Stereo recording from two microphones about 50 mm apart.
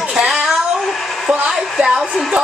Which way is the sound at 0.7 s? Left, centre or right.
Centre.